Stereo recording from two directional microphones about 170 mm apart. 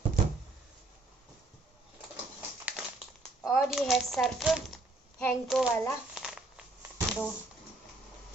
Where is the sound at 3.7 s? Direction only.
Centre (ahead or behind).